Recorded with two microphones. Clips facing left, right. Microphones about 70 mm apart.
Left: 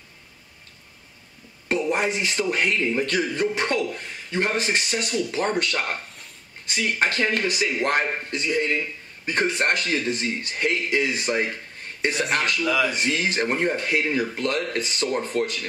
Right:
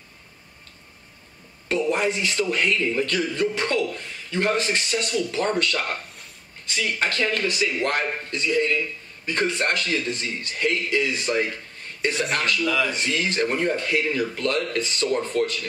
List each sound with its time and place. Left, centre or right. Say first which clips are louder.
1.7 s a man's voice: right 1 dB; centre